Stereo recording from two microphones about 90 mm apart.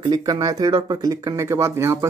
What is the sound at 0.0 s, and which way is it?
Speech, 50° right (ahead or behind).